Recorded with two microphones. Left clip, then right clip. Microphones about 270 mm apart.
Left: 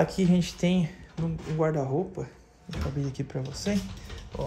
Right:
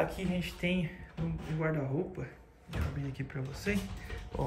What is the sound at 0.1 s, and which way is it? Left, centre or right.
Speech, centre.